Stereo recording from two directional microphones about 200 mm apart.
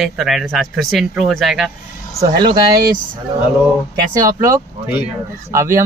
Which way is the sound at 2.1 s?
20° right (ahead or behind).